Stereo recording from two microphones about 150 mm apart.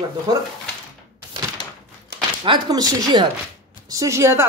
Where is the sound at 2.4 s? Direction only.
30° right (ahead or behind).